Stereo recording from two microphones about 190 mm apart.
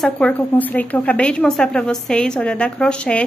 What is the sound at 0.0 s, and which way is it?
A woman's voice, 5° left (ahead or behind).